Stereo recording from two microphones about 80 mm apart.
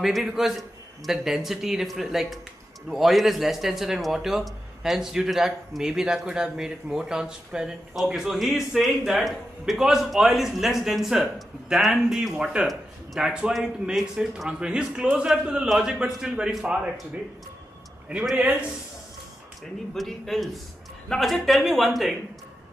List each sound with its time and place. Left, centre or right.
0.0 s a man's voice: centre
18.3 s a man's voice: centre
19.9 s a man's voice: centre